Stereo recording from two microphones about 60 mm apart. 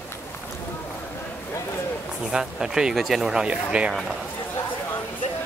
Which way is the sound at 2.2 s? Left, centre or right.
Centre.